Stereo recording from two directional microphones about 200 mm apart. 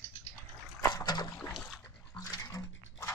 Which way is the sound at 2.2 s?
20° left (ahead or behind).